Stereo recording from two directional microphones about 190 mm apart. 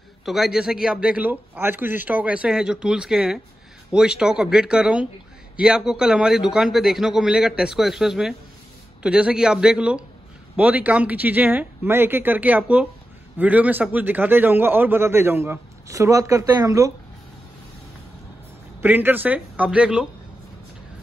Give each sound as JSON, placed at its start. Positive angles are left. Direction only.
{"t": 0.2, "sound": "a man's voice", "side_deg": 0}
{"t": 18.8, "sound": "a man's voice", "side_deg": -10}